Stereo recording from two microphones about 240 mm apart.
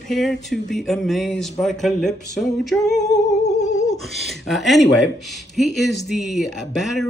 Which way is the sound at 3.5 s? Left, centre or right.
Left.